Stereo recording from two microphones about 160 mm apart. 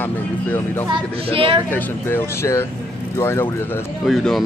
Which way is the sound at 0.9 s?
35° right (ahead or behind).